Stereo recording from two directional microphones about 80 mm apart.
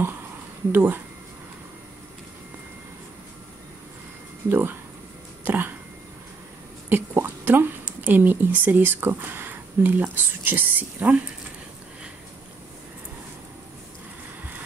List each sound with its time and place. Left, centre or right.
0.7 s speech: right
4.5 s speech: right
5.4 s a sound: right
6.9 s speech: right